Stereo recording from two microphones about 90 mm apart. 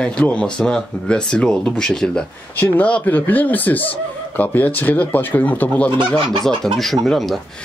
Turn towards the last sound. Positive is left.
turn(degrees=0)  # may be behind; listen again after turning